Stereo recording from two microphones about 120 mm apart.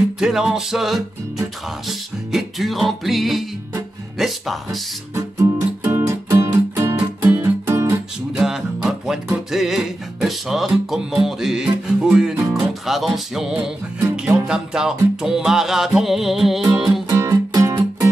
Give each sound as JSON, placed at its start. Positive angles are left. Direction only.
{"t": 0.2, "sound": "music", "side_deg": -5}
{"t": 5.1, "sound": "music", "side_deg": -20}
{"t": 8.4, "sound": "music", "side_deg": -5}
{"t": 17.1, "sound": "music", "side_deg": -25}